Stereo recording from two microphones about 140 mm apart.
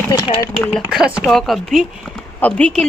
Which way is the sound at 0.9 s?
Centre (ahead or behind).